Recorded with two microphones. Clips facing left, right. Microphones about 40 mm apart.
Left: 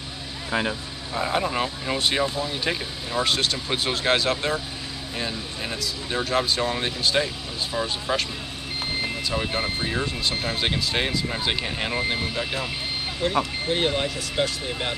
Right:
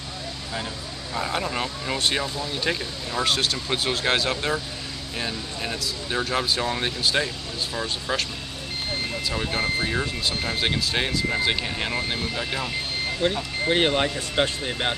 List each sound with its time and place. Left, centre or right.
0.5 s speech: left
1.1 s speech: centre
9.3 s speech: centre
13.2 s speech: right